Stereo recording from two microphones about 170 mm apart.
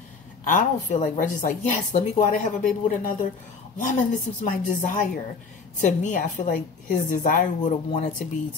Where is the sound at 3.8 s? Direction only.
50° left (ahead or behind).